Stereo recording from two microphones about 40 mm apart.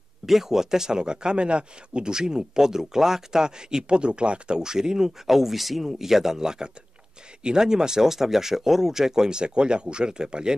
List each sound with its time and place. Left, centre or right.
0.3 s speech: centre